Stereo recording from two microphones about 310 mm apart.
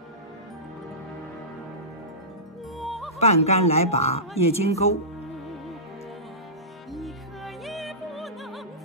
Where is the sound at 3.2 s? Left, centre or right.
Centre.